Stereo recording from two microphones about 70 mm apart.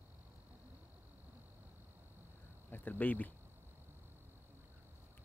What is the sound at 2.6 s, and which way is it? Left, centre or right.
Speech, left.